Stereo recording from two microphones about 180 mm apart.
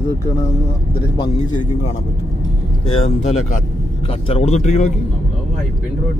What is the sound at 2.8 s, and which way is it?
Speech, 35° left (ahead or behind).